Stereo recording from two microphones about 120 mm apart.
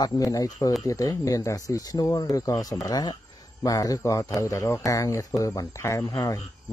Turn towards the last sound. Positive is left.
turn(degrees=25)  # may be behind; listen again after turning